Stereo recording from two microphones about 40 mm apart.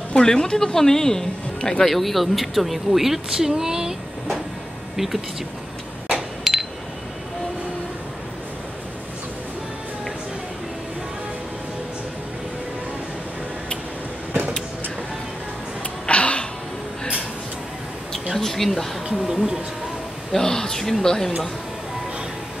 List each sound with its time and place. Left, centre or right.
0.1 s speech: centre
1.9 s speech: centre
4.9 s speech: centre
6.5 s a sound: centre
16.1 s music: left
18.4 s speech: centre
19.0 s speech: centre
20.3 s a sound: centre
21.0 s speech: centre